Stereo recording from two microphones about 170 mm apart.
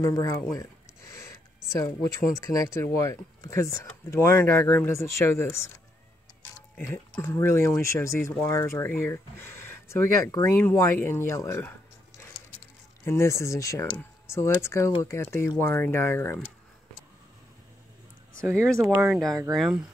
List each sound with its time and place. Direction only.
0.0 s a sound: 20° left (ahead or behind)
2.5 s speech: 20° left (ahead or behind)
6.9 s speech: 15° left (ahead or behind)
13.0 s speech: 15° left (ahead or behind)
18.4 s speech: 15° right (ahead or behind)
18.9 s speech: 5° right (ahead or behind)